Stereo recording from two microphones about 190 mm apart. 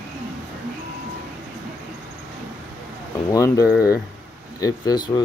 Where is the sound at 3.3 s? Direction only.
15° left (ahead or behind).